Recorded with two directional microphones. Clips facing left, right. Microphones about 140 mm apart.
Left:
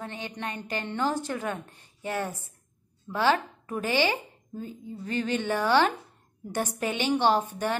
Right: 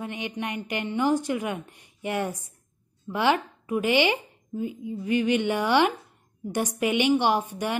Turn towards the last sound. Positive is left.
turn(degrees=-15)  # may be behind; listen again after turning